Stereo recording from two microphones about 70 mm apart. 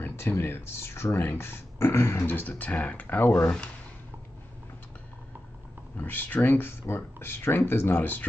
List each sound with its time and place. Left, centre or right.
0.0 s speech: left; by 3.7 s centre
5.9 s speech: left